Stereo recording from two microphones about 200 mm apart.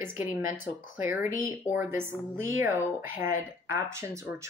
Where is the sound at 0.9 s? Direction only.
10° right (ahead or behind).